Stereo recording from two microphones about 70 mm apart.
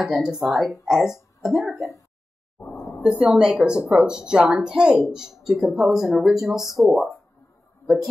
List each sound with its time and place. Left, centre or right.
0.0 s a woman's voice: centre
3.0 s a woman's voice: centre